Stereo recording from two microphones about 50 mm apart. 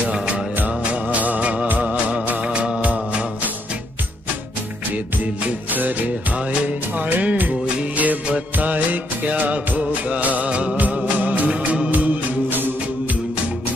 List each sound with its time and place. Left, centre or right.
0.7 s music: right
5.7 s music: right
11.9 s music: right